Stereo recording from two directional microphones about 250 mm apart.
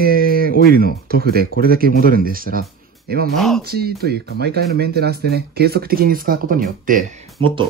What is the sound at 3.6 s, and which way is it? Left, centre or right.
Speech, right.